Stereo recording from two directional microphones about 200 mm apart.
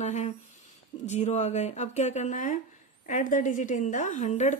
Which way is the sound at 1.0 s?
35° left (ahead or behind).